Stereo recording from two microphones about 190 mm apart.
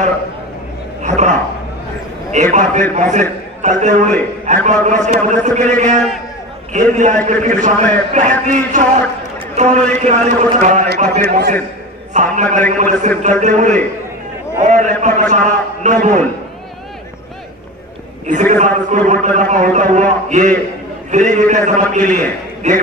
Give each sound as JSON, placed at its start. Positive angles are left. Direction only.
{"t": 1.0, "sound": "a sound", "side_deg": -40}
{"t": 2.3, "sound": "a man's voice", "side_deg": -40}
{"t": 11.1, "sound": "a man's voice", "side_deg": -60}
{"t": 12.1, "sound": "a man's voice", "side_deg": -40}
{"t": 18.5, "sound": "a man's voice", "side_deg": -40}